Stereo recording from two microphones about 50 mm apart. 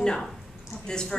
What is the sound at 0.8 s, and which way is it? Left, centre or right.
Speech, centre.